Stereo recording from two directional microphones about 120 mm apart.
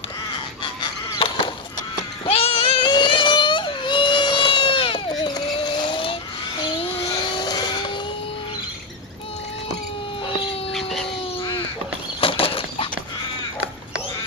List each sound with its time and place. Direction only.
1.2 s fowl: 50° left (ahead or behind)
2.2 s child singing: 55° left (ahead or behind)
2.9 s baby cry: 40° left (ahead or behind)
6.6 s a sound: 50° left (ahead or behind)
7.2 s vehicle: 35° left (ahead or behind)
10.7 s dog: centre (ahead or behind)
12.2 s a sound: 50° left (ahead or behind)